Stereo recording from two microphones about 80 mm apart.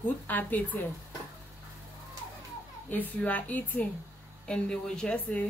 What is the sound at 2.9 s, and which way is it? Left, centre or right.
A woman's voice, left.